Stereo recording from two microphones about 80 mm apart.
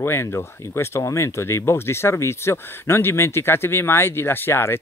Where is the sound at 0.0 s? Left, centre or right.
Left.